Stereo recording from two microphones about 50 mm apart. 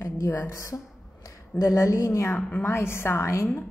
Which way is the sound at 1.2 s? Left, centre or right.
Left.